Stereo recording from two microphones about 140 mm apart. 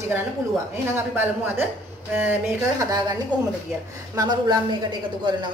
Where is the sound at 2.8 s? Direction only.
25° right (ahead or behind).